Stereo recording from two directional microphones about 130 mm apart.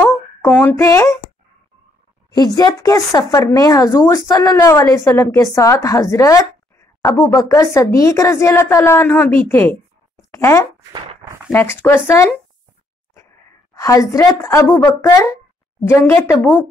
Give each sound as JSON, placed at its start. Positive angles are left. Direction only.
{"t": 0.4, "sound": "speech", "side_deg": 15}
{"t": 2.3, "sound": "speech", "side_deg": 30}
{"t": 3.9, "sound": "speech", "side_deg": 20}
{"t": 13.7, "sound": "speech", "side_deg": 25}